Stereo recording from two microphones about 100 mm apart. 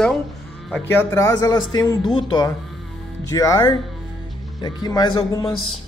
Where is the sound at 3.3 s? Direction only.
35° left (ahead or behind).